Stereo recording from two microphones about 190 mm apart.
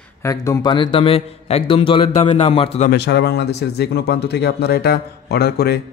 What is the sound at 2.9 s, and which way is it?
Speech, 60° left (ahead or behind).